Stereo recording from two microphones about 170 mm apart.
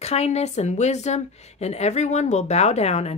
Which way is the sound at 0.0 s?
40° left (ahead or behind).